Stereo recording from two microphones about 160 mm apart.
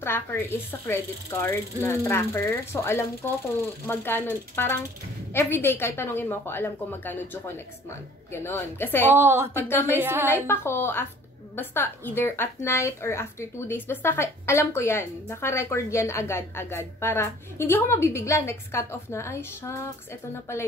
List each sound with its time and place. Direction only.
0.0 s a woman's voice: 15° left (ahead or behind)
8.3 s a woman's voice: 15° left (ahead or behind)
9.0 s a woman's voice: 15° right (ahead or behind)
10.3 s a woman's voice: 15° left (ahead or behind)